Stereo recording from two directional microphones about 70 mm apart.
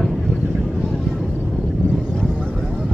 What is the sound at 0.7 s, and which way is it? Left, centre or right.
Vehicle, centre.